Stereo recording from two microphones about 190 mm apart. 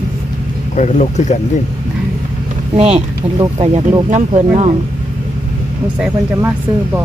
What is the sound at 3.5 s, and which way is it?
Speech, 30° right (ahead or behind).